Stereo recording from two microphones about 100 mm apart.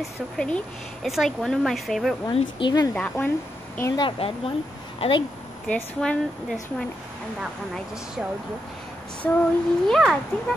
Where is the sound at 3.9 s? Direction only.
65° left (ahead or behind).